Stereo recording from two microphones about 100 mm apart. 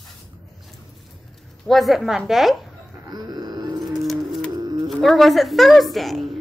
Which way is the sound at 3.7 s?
Centre (ahead or behind).